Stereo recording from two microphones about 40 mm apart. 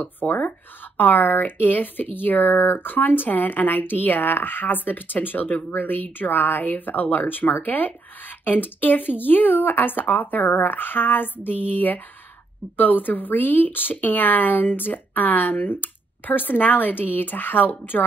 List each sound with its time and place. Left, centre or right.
0.0 s a woman's voice: left